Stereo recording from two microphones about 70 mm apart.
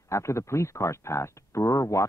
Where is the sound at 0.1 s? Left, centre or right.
Left.